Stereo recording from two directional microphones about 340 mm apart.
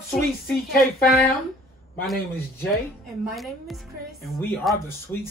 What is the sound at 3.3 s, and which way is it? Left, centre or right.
A woman's voice, centre.